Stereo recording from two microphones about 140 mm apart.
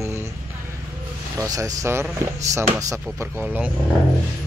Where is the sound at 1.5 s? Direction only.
25° right (ahead or behind).